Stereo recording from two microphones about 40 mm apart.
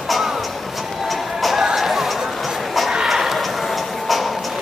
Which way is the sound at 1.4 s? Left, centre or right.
Centre.